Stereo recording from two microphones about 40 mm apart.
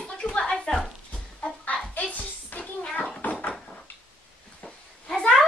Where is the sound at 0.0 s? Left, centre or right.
Left.